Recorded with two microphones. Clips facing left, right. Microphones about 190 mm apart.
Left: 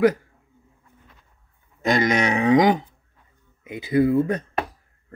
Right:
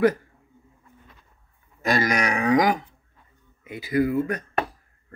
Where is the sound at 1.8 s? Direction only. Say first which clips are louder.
Left 3 dB; 20° left (ahead or behind).